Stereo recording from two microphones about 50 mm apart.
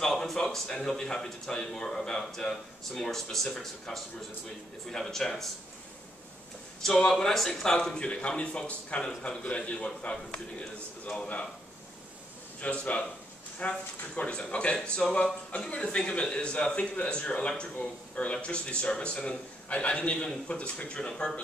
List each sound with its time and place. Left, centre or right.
0.0 s speech: centre
7.1 s a man's voice: centre; by 11.4 s left
12.5 s a man's voice: left